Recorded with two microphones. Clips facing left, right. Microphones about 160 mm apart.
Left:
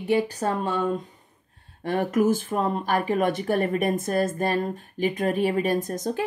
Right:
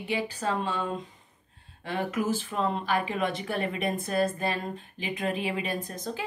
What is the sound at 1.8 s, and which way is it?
Speech, 50° left (ahead or behind).